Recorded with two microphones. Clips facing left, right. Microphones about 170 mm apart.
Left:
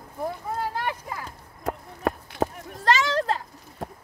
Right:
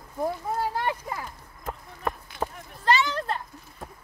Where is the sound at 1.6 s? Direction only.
80° left.